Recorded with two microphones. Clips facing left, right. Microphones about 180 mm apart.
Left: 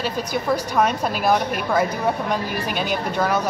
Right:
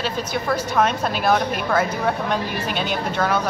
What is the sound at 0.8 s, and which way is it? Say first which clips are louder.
A woman's voice: right 1 dB; centre (ahead or behind).